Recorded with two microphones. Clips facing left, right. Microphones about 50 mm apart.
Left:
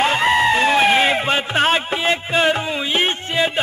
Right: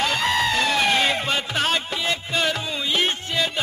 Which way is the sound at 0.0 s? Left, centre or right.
Left.